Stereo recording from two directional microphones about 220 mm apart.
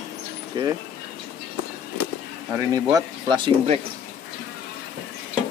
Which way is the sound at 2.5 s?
15° right (ahead or behind).